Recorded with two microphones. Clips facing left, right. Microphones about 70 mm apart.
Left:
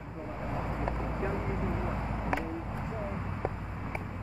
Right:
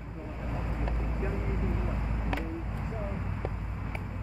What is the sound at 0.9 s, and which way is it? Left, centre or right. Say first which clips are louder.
Vehicle: left 3 dB; left.